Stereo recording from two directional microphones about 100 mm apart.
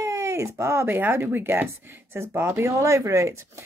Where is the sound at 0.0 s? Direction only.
30° right (ahead or behind).